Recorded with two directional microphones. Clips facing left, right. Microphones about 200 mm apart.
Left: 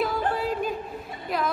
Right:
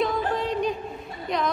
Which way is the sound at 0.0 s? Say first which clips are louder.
Right 1 dB; 5° left (ahead or behind).